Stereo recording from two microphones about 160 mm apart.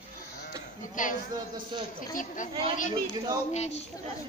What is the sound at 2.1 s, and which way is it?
Speech, 55° left (ahead or behind).